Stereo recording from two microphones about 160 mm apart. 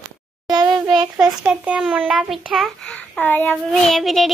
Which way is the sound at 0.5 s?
25° right (ahead or behind).